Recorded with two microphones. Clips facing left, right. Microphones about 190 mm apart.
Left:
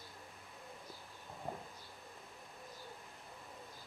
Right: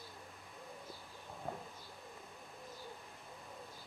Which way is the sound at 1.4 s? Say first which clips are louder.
Even; centre (ahead or behind).